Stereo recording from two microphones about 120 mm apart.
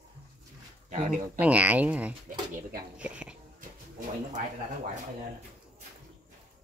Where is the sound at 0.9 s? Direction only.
90° right.